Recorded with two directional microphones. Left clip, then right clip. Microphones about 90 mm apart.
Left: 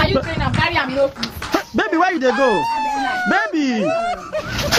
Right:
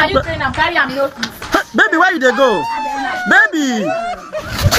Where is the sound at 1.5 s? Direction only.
5° right (ahead or behind).